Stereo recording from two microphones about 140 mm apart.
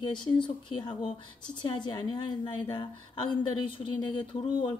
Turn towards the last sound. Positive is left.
turn(degrees=40)  # may be behind; listen again after turning